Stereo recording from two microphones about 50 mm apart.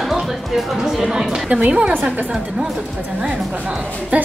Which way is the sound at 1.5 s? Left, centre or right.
Right.